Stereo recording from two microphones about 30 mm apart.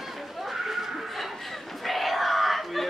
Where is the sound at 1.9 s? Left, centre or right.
Centre.